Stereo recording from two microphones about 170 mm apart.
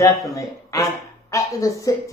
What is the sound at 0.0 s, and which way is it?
Speech, 20° left (ahead or behind).